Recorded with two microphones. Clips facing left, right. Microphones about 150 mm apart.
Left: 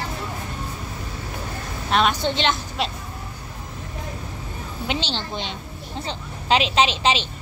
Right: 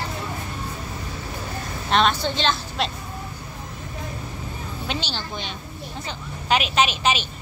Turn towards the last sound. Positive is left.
turn(degrees=25)  # may be behind; listen again after turning